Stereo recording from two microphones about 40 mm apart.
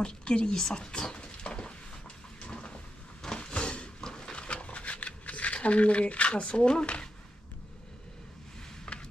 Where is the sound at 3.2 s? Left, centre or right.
Left.